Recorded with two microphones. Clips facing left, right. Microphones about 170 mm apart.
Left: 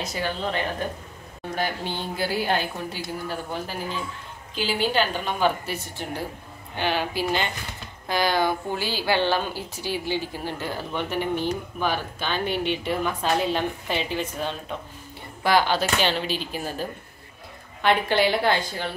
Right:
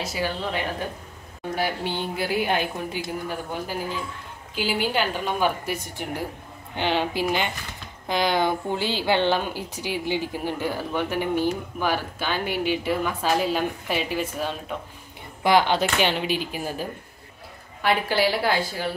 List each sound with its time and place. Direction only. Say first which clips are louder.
0.0 s speech: even; 5° right (ahead or behind)
4.6 s a woman's voice: left 1 dB; 10° right (ahead or behind)
15.4 s speech: right 2 dB; 20° right (ahead or behind)
17.8 s a woman's voice: left 1 dB; 5° right (ahead or behind)